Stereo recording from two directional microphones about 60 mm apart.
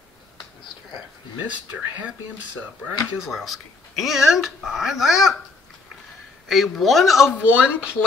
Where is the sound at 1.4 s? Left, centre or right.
Right.